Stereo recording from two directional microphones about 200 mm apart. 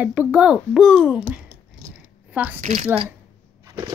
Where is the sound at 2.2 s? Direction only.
10° right (ahead or behind).